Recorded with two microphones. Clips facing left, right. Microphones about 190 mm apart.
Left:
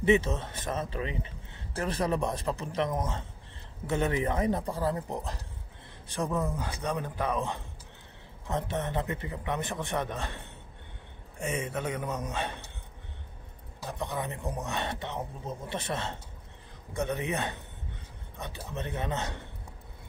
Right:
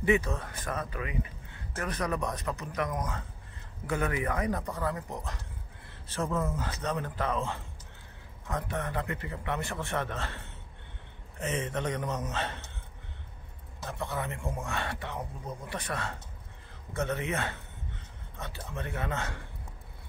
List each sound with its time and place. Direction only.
0.0 s a man's voice: 25° left (ahead or behind)
6.0 s a man's voice: 15° left (ahead or behind)
13.7 s a man's voice: 15° left (ahead or behind)